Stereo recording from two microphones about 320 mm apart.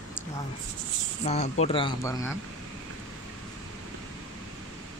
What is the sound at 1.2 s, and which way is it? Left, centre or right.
Speech, centre.